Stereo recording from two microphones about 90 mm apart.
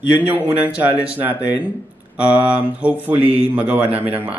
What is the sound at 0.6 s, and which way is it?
Speech, 20° right (ahead or behind).